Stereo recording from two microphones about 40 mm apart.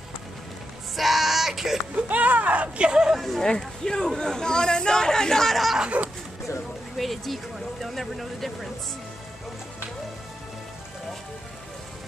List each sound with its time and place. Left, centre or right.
0.9 s music: centre
2.0 s speech: right
2.9 s speech: centre
3.2 s speech: centre
3.4 s speech: centre
5.9 s speech: right
7.0 s speech: centre